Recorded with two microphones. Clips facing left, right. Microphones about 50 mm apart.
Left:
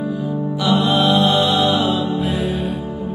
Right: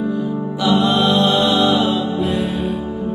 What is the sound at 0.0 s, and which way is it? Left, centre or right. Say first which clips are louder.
Music: right 1 dB; centre.